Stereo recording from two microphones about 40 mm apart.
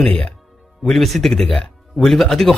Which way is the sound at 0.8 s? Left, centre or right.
Centre.